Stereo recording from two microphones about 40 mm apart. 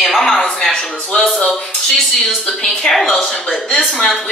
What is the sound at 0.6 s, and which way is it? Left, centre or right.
Speech, centre.